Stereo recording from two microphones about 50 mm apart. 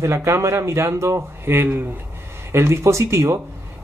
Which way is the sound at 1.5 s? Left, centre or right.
Right.